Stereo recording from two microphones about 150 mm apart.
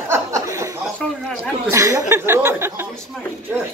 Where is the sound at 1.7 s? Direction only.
20° right (ahead or behind).